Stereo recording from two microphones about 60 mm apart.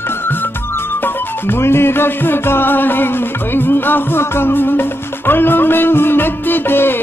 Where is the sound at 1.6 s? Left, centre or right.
Left.